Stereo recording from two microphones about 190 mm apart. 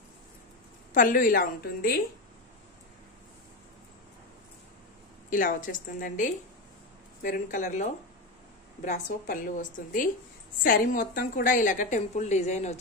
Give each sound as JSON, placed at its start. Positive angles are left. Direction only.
{"t": 0.9, "sound": "a woman's voice", "side_deg": 45}
{"t": 5.3, "sound": "a woman's voice", "side_deg": 45}